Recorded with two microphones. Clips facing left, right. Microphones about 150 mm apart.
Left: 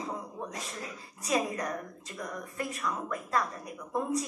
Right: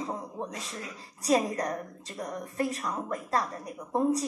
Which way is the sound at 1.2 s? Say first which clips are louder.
Right 4 dB; 35° right (ahead or behind).